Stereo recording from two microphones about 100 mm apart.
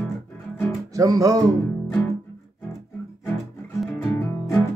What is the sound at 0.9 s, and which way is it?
Music, 35° right (ahead or behind).